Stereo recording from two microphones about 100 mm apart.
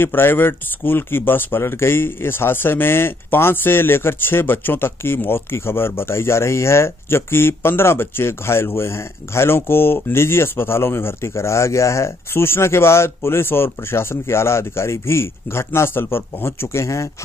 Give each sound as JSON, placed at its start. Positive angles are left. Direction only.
{"t": 0.0, "sound": "speech", "side_deg": 20}